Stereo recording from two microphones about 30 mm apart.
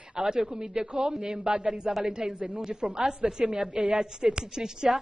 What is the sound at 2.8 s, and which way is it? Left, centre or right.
A woman's voice, right.